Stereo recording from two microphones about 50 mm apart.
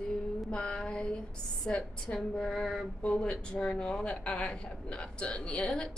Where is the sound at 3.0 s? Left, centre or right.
Left.